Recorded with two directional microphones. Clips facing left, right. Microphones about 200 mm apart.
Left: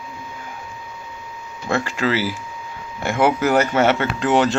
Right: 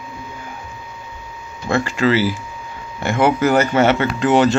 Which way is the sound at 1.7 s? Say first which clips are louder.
Right 4 dB; centre (ahead or behind).